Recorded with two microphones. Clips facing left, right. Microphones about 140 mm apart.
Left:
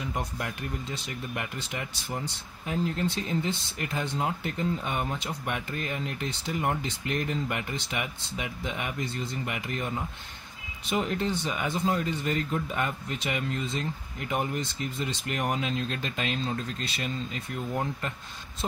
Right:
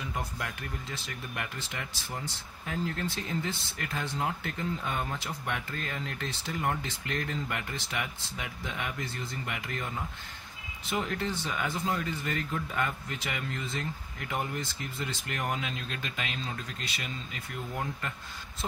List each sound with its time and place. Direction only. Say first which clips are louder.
0.9 s speech: left 4 dB; 20° left (ahead or behind)
15.5 s speech: left 5 dB; 30° left (ahead or behind)